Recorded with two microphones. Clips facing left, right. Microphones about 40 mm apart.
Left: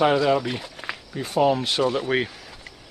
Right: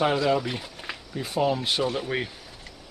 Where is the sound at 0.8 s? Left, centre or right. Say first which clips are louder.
Left 3 dB; centre.